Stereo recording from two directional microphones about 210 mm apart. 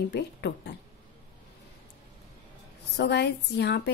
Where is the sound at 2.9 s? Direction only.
55° left (ahead or behind).